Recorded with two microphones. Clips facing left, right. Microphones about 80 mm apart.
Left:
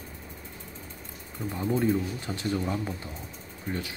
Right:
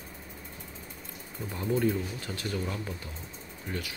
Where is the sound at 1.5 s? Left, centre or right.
Centre.